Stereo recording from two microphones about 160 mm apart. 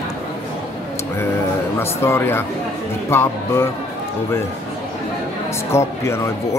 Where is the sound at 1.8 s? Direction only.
15° left (ahead or behind).